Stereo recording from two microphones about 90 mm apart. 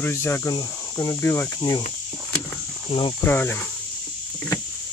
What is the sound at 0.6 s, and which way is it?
Speech, 50° left (ahead or behind).